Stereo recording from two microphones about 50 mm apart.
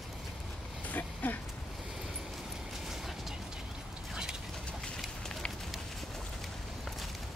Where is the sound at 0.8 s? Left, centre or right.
Left.